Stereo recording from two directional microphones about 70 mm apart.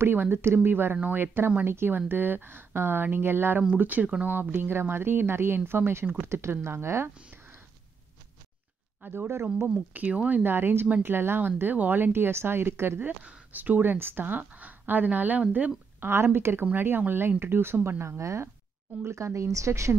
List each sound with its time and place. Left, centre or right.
0.0 s speech: right
9.1 s speech: right
9.9 s speech: right
13.0 s speech: right
16.0 s speech: right